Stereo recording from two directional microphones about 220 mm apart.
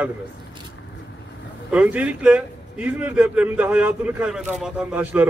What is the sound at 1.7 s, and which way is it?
A man's voice, 5° right (ahead or behind).